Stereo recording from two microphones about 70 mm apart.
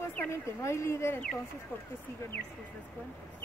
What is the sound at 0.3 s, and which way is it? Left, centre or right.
Speech, left.